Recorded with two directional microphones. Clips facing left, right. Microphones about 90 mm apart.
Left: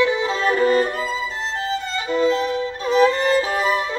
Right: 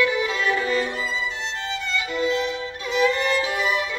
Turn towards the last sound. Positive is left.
turn(degrees=40)  # may be behind; listen again after turning